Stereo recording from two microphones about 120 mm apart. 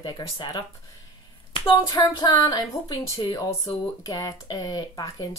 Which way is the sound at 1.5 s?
45° left (ahead or behind).